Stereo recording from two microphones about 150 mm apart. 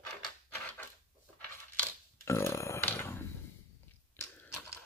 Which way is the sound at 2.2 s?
20° left (ahead or behind).